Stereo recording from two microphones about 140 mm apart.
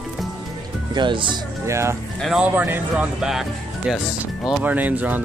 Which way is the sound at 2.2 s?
5° right (ahead or behind).